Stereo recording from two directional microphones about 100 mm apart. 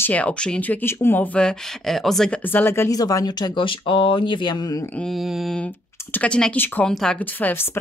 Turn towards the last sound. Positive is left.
turn(degrees=20)  # may be behind; listen again after turning